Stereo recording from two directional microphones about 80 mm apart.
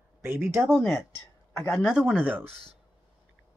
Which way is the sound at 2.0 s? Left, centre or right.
Centre.